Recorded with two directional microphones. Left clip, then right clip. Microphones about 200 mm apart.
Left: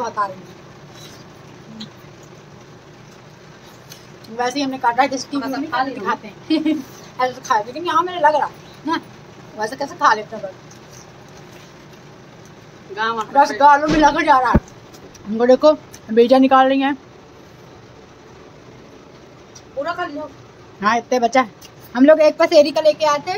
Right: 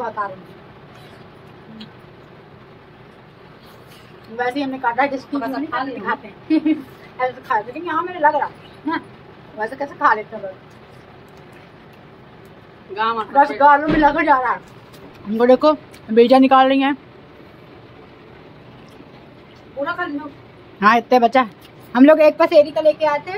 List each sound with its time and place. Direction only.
0.0 s speech: 10° left (ahead or behind)
4.4 s a woman's voice: 10° left (ahead or behind)
12.9 s a woman's voice: 5° right (ahead or behind)
15.3 s speech: centre (ahead or behind)
20.8 s speech: 15° right (ahead or behind)
22.5 s a woman's voice: 15° left (ahead or behind)